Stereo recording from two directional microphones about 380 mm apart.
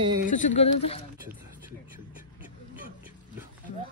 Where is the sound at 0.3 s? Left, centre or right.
Centre.